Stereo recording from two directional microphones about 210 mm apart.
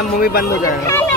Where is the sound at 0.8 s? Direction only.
10° left (ahead or behind).